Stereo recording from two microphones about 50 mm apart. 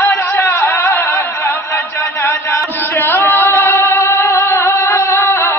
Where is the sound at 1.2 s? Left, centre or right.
Left.